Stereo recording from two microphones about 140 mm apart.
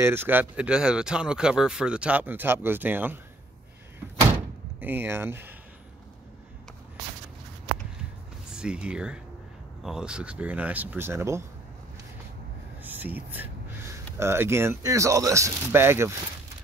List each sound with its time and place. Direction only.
0.0 s speech: 15° right (ahead or behind)
4.7 s speech: 15° right (ahead or behind)
8.5 s speech: 5° right (ahead or behind)
12.8 s speech: 15° right (ahead or behind)